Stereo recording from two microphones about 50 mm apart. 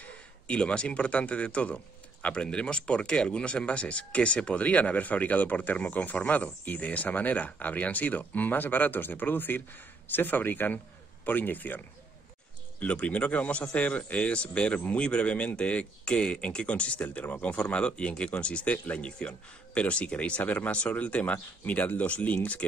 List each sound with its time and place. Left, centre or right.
0.0 s speech: left
12.8 s speech: left